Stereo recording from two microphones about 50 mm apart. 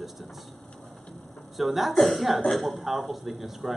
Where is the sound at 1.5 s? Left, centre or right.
Centre.